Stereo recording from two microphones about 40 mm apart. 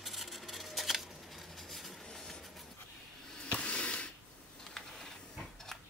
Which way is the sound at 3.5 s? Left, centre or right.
Left.